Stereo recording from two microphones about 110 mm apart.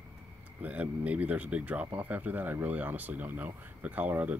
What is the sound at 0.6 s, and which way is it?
Speech, 15° right (ahead or behind).